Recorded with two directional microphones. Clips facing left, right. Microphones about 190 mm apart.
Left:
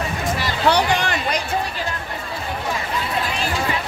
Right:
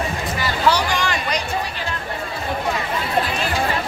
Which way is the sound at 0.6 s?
60° left (ahead or behind).